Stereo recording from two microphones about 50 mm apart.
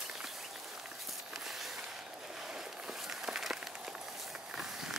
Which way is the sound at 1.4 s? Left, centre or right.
Centre.